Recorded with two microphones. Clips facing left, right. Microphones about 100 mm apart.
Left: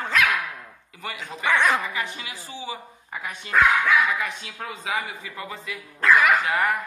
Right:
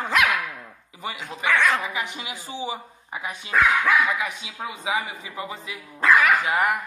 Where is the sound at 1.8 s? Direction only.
15° right (ahead or behind).